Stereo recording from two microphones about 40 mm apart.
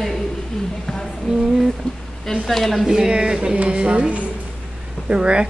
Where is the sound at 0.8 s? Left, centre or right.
Centre.